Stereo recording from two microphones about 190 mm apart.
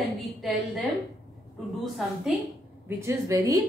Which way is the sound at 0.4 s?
Centre (ahead or behind).